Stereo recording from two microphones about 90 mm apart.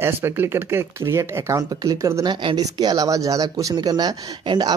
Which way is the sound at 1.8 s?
45° right (ahead or behind).